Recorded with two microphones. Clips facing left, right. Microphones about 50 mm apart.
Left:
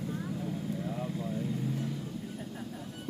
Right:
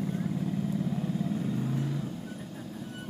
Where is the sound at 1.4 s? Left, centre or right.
Right.